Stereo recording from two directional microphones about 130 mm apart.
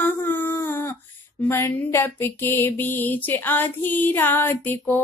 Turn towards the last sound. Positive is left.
turn(degrees=15)  # may be behind; listen again after turning